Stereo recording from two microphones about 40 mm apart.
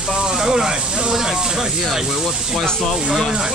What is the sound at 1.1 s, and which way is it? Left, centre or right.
Speech, centre.